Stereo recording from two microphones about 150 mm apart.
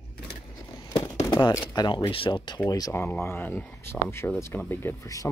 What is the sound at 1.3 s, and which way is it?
Speech, 25° left (ahead or behind).